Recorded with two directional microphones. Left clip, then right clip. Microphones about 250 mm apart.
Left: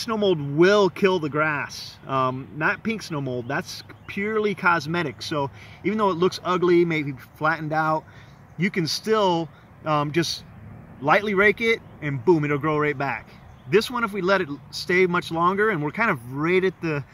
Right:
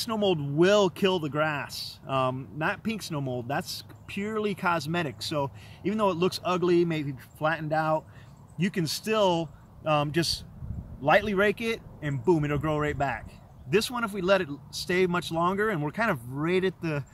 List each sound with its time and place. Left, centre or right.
0.1 s speech: centre